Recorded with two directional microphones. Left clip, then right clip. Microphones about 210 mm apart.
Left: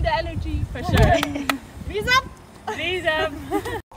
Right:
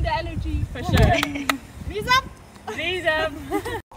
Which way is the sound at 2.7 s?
Centre (ahead or behind).